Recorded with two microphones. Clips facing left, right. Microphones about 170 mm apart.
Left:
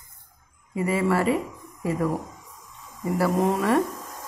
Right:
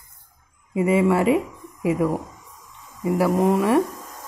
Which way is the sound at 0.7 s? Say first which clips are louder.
Right 5 dB; 20° right (ahead or behind).